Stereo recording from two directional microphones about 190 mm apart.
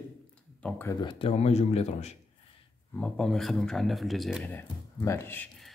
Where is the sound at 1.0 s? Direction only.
30° left (ahead or behind).